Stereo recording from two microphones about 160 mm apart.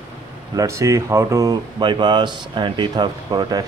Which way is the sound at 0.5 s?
20° right (ahead or behind).